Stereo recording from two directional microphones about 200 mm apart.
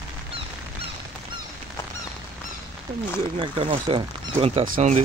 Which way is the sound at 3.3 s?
25° right (ahead or behind).